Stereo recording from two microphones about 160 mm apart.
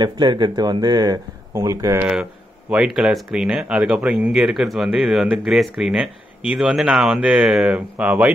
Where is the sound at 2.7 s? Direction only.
5° right (ahead or behind).